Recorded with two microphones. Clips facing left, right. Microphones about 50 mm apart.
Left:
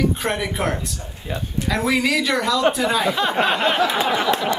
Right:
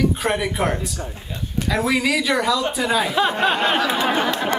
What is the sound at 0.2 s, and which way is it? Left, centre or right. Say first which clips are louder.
Speech: right 2 dB; centre.